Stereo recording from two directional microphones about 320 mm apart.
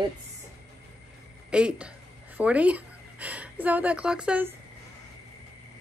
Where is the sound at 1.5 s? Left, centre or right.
Centre.